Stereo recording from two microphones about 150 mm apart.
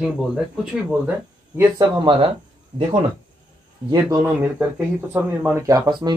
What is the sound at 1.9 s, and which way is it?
Speech, 35° right (ahead or behind).